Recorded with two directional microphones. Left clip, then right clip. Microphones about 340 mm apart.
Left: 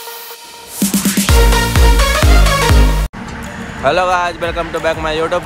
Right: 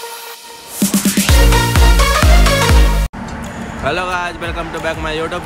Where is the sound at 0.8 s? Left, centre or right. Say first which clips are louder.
Even; centre.